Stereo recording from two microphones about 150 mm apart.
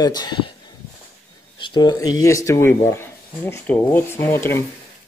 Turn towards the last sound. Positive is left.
turn(degrees=15)  # may be behind; listen again after turning